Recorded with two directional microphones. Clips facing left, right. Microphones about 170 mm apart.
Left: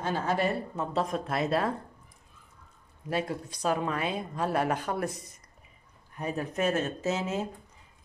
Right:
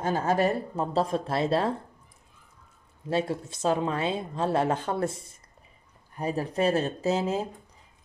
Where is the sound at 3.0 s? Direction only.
25° right (ahead or behind).